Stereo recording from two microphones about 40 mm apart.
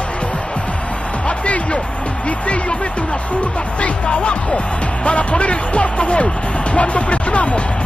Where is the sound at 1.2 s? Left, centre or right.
Left.